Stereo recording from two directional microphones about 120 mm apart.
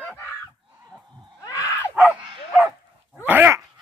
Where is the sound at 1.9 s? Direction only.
10° right (ahead or behind).